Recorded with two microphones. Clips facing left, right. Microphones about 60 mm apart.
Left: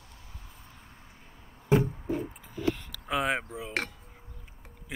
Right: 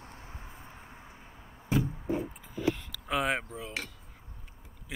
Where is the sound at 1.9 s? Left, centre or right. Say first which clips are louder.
Even; centre.